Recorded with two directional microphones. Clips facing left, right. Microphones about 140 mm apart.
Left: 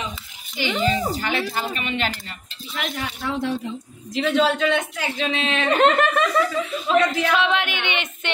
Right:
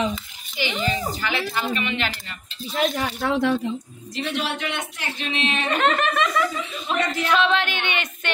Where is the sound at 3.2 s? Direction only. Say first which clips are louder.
Right 4 dB; 70° right (ahead or behind).